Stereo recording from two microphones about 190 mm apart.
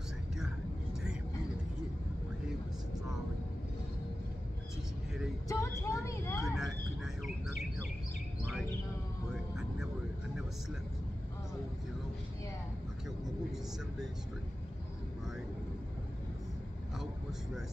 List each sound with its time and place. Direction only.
5.5 s a sound: 15° left (ahead or behind)
6.4 s bird: centre (ahead or behind)
16.9 s vehicle: centre (ahead or behind)